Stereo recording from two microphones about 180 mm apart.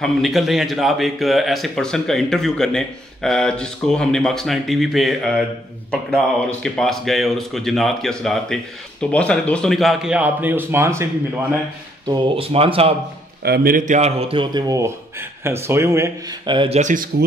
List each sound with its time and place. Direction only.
0.0 s a man's voice: centre (ahead or behind)
12.1 s speech: 30° right (ahead or behind)
13.4 s speech: 55° right (ahead or behind)